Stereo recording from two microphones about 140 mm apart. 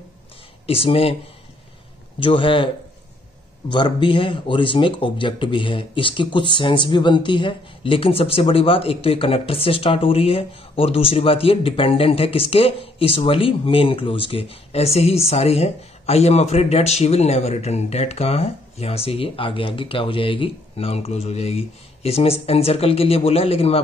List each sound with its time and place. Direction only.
0.7 s speech: 45° left (ahead or behind)
2.1 s speech: 40° left (ahead or behind)